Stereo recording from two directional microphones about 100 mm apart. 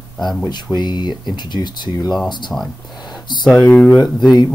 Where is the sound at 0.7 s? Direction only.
45° left (ahead or behind).